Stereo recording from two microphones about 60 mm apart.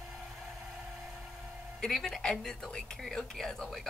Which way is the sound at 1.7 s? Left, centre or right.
Centre.